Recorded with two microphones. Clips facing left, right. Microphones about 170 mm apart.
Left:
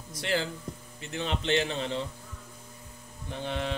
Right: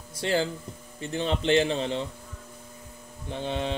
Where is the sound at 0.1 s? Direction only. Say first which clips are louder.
Right 4 dB; 30° right (ahead or behind).